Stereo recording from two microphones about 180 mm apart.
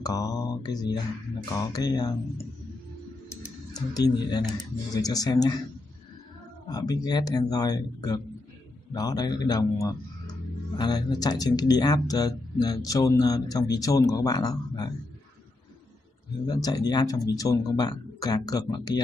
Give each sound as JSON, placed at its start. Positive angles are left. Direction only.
{"t": 0.0, "sound": "mantra", "side_deg": 20}
{"t": 1.7, "sound": "speech", "side_deg": 20}
{"t": 3.7, "sound": "speech", "side_deg": 20}
{"t": 6.7, "sound": "speech", "side_deg": 20}
{"t": 16.4, "sound": "speech", "side_deg": 20}